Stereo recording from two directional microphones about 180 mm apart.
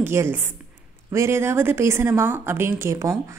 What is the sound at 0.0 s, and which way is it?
A woman's voice, 15° right (ahead or behind).